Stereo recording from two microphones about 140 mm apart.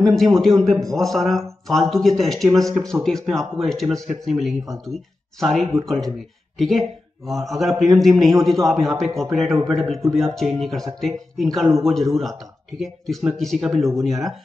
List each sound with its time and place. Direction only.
0.0 s a man's voice: centre (ahead or behind)